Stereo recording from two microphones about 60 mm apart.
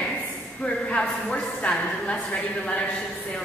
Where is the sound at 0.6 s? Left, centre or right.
Centre.